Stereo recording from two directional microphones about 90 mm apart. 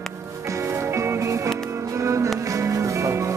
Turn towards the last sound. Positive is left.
turn(degrees=-35)  # may be behind; listen again after turning